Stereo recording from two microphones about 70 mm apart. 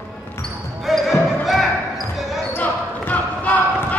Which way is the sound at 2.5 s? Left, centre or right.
Left.